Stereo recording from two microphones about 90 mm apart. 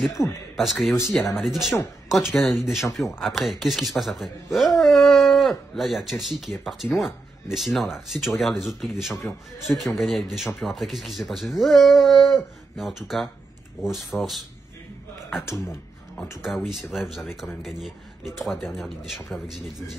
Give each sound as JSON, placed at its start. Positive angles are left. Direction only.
{"t": 0.2, "sound": "a man's voice", "side_deg": 30}
{"t": 0.6, "sound": "speech", "side_deg": 0}
{"t": 16.3, "sound": "speech", "side_deg": -5}